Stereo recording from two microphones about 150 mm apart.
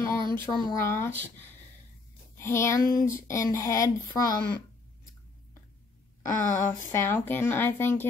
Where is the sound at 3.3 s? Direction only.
20° left (ahead or behind).